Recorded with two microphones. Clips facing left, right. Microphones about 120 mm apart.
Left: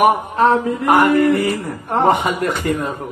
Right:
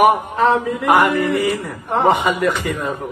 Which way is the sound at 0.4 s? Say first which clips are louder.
Left 1 dB; 40° left (ahead or behind).